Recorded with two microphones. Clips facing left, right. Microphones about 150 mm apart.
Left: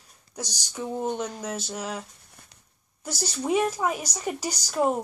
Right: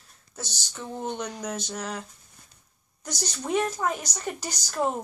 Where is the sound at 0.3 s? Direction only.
15° left (ahead or behind).